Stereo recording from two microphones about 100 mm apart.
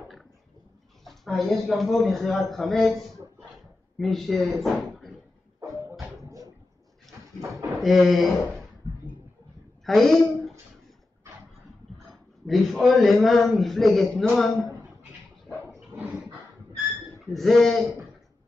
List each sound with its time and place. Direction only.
1.0 s a man's voice: centre (ahead or behind)
4.0 s a man's voice: centre (ahead or behind)
5.6 s a sound: 30° right (ahead or behind)
7.8 s a man's voice: centre (ahead or behind)
9.8 s a woman's voice: centre (ahead or behind)
12.4 s a man's voice: centre (ahead or behind)
15.9 s dog: 15° right (ahead or behind)
17.2 s a man's voice: centre (ahead or behind)